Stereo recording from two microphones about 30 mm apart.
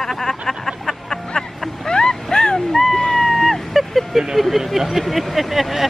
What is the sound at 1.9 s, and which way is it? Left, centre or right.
Boat, left.